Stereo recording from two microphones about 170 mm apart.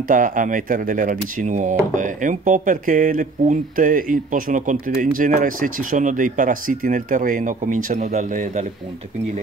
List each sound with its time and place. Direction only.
0.1 s speech: 50° right (ahead or behind)